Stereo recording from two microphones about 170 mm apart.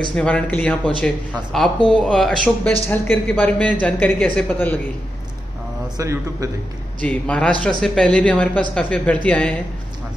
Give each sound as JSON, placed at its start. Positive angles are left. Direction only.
{"t": 0.1, "sound": "speech", "side_deg": 5}
{"t": 5.9, "sound": "a man's voice", "side_deg": -20}
{"t": 7.0, "sound": "speech", "side_deg": 5}